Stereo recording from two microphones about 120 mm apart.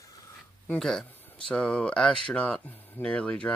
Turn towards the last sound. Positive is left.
turn(degrees=10)  # may be behind; listen again after turning